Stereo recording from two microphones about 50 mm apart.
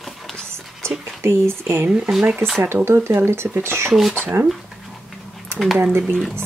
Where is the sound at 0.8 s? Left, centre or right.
Right.